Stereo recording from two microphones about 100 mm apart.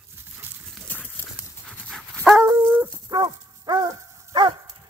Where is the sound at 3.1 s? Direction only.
40° right (ahead or behind).